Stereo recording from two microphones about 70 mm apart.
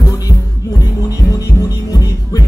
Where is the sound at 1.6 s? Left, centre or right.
Left.